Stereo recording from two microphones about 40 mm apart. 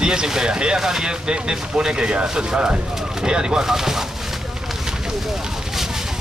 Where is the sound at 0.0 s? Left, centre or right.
Centre.